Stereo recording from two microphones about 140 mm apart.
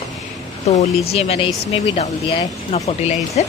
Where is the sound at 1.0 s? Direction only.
45° left (ahead or behind).